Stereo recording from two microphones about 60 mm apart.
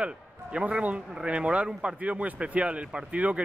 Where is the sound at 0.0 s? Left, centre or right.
Centre.